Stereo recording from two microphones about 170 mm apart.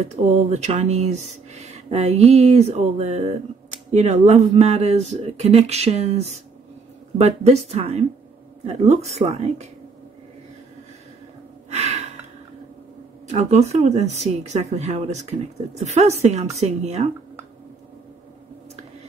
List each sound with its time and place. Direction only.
0.1 s speech: 40° right (ahead or behind)
11.7 s gasp: 40° right (ahead or behind)
13.3 s speech: 40° right (ahead or behind)